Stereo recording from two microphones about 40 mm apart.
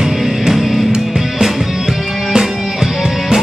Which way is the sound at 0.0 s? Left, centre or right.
Centre.